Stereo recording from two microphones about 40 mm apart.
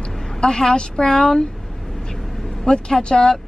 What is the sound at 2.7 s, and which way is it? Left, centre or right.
Speech, centre.